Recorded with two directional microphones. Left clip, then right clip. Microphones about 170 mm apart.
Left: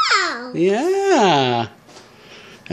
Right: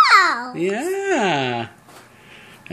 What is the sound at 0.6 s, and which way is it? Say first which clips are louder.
Speech: left 5 dB; 45° left (ahead or behind).